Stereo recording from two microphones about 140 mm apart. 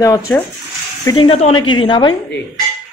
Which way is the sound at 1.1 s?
35° left (ahead or behind).